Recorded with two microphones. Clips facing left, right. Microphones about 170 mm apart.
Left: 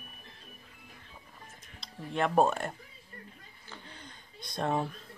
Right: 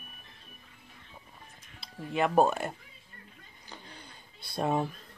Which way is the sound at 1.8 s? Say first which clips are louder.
Right 2 dB; 5° right (ahead or behind).